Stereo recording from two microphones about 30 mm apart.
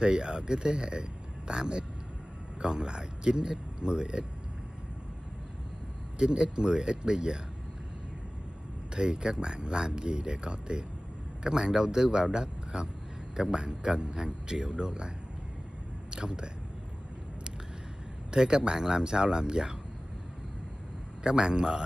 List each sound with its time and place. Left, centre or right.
0.0 s speech: right
6.1 s speech: right
8.9 s speech: right
18.3 s speech: right
21.2 s speech: right